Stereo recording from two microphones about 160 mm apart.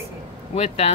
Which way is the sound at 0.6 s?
40° left (ahead or behind).